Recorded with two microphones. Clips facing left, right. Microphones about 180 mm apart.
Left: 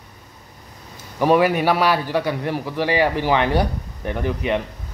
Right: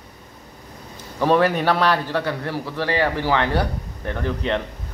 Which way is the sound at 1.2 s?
10° left (ahead or behind).